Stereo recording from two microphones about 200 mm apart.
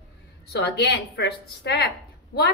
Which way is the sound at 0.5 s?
55° left (ahead or behind).